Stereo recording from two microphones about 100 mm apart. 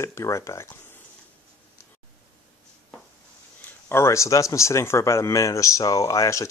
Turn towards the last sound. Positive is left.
turn(degrees=30)  # may be behind; listen again after turning